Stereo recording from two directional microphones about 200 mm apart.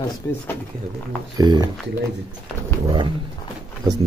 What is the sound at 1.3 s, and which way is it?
Speech, 20° right (ahead or behind).